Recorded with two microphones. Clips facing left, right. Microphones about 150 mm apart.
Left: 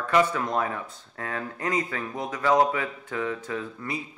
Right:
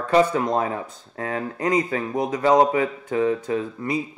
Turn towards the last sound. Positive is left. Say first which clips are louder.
# right 7 dB
turn(degrees=-20)  # may be behind; listen again after turning